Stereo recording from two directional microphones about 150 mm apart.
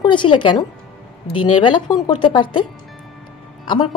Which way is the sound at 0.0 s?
30° left (ahead or behind).